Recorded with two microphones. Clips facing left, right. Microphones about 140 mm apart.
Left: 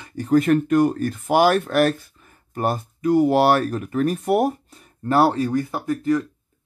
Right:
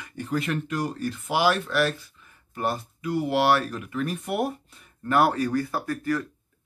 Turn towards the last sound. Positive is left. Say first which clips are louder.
# left 6 dB
turn(degrees=20)  # may be behind; listen again after turning